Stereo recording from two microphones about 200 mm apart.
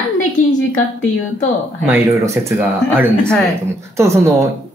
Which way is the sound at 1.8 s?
10° right (ahead or behind).